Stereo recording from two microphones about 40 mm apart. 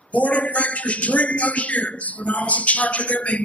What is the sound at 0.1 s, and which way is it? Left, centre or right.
A man's voice, left.